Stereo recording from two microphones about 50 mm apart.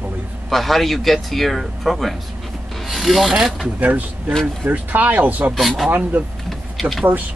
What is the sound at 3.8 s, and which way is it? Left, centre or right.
A man's voice, right.